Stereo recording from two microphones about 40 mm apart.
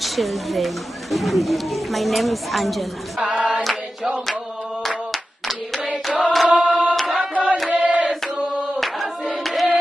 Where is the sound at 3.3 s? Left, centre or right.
Right.